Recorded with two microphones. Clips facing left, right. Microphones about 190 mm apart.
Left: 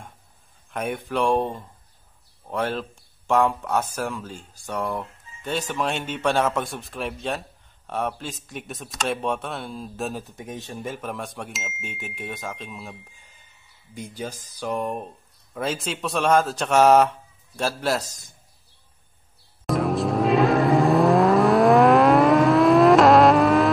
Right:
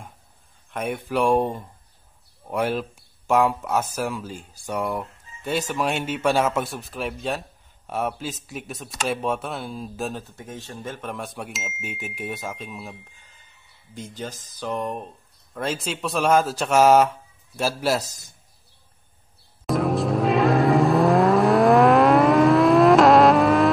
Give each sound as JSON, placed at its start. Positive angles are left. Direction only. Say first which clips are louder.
{"t": 0.7, "sound": "speech", "louder": "even", "side_deg": 0}
{"t": 10.2, "sound": "speech", "louder": "left 2 dB", "side_deg": 15}
{"t": 11.0, "sound": "speech", "louder": "even", "side_deg": 0}
{"t": 14.1, "sound": "speech", "louder": "left 2 dB", "side_deg": 10}
{"t": 19.6, "sound": "vehicle", "louder": "even", "side_deg": 0}